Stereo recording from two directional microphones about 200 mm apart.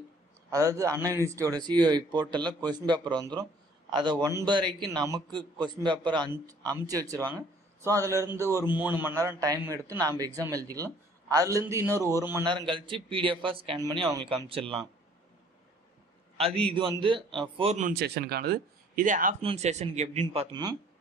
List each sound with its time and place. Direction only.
0.5 s a man's voice: 15° right (ahead or behind)
16.3 s speech: 25° right (ahead or behind)
17.6 s speech: 35° right (ahead or behind)
17.9 s speech: 55° right (ahead or behind); by 20.4 s 35° right (ahead or behind)